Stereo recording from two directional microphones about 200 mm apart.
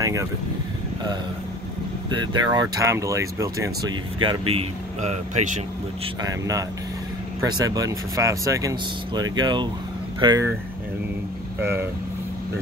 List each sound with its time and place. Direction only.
0.0 s vehicle: 15° right (ahead or behind)
2.1 s speech: 20° right (ahead or behind)
4.2 s speech: 25° right (ahead or behind)
6.2 s speech: 15° right (ahead or behind)
11.6 s speech: 10° right (ahead or behind)